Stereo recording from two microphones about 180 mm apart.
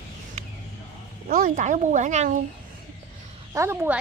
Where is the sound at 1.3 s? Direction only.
45° right (ahead or behind).